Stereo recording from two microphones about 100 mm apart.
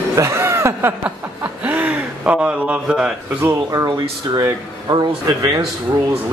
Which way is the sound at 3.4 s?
30° right (ahead or behind).